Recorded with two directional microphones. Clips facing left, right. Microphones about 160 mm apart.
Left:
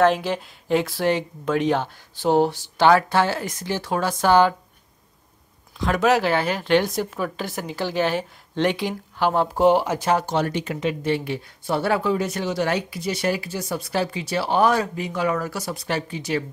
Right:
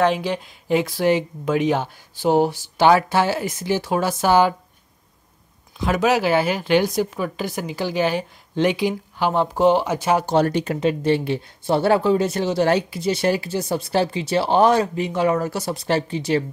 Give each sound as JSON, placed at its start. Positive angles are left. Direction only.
{"t": 0.0, "sound": "speech", "side_deg": 0}
{"t": 5.8, "sound": "a woman's voice", "side_deg": -5}
{"t": 10.2, "sound": "speech", "side_deg": -40}